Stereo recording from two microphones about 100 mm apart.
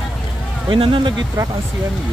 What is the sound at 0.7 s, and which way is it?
Speech, 55° right (ahead or behind).